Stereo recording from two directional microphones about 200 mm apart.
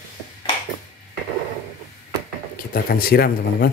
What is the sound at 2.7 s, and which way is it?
Speech, 45° left (ahead or behind).